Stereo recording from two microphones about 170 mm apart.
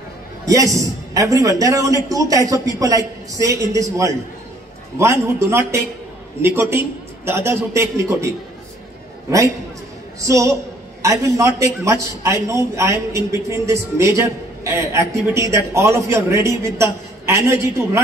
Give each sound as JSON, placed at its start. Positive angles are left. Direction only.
{"t": 0.5, "sound": "a man's voice", "side_deg": -20}
{"t": 10.2, "sound": "a man's voice", "side_deg": -20}